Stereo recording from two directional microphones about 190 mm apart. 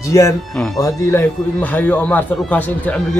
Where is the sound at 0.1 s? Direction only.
15° left (ahead or behind).